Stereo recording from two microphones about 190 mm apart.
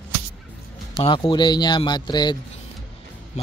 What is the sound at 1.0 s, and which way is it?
A man's voice, 25° left (ahead or behind).